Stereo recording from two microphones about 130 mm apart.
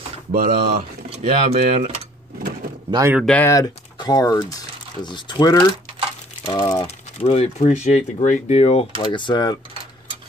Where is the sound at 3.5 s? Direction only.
30° left (ahead or behind).